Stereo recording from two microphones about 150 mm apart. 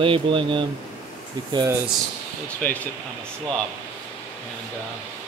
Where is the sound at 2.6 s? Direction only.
10° left (ahead or behind).